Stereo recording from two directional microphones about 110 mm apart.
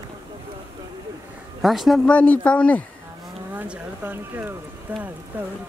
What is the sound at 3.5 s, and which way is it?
Speech, 15° right (ahead or behind).